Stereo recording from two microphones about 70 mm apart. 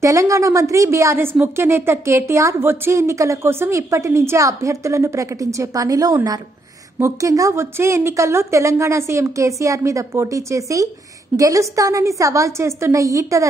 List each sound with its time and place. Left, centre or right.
0.0 s speech: right
7.0 s speech: right
7.7 s speech: right